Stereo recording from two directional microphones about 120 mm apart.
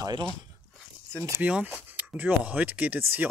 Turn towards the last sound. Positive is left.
turn(degrees=-15)  # may be behind; listen again after turning